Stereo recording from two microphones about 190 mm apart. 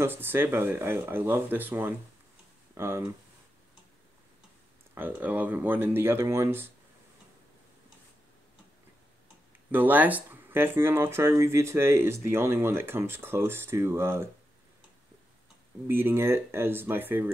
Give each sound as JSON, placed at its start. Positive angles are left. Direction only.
{"t": 0.0, "sound": "speech", "side_deg": -10}
{"t": 4.9, "sound": "speech", "side_deg": -10}
{"t": 9.7, "sound": "speech", "side_deg": -10}
{"t": 15.9, "sound": "speech", "side_deg": -10}